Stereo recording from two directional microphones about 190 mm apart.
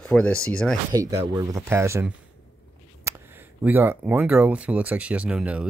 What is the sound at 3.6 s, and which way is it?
Speech, 10° right (ahead or behind).